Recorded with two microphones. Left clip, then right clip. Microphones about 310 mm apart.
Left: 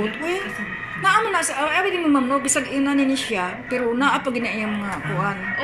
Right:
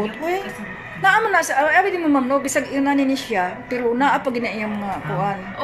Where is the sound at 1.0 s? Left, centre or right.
Right.